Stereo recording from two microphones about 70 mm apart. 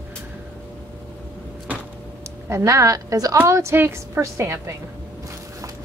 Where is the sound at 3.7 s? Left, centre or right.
Right.